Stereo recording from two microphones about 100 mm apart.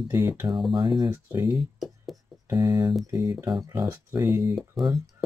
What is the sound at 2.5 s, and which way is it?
Speech, 40° right (ahead or behind).